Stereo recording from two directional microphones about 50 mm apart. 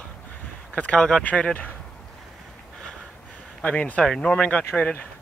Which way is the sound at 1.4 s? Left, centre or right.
Left.